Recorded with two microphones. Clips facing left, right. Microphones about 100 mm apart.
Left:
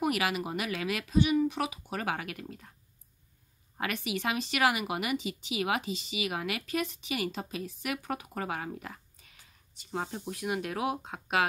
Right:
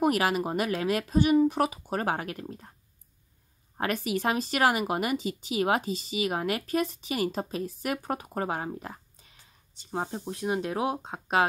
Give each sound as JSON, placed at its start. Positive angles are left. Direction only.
{"t": 0.0, "sound": "speech", "side_deg": -40}
{"t": 3.7, "sound": "speech", "side_deg": -40}